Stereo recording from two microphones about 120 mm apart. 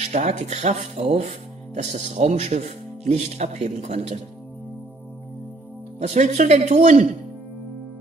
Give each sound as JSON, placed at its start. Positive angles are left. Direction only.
{"t": 0.1, "sound": "speech", "side_deg": -75}
{"t": 1.7, "sound": "speech", "side_deg": -75}
{"t": 5.9, "sound": "speech", "side_deg": -80}